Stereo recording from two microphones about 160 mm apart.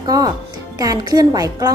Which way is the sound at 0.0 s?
25° right (ahead or behind).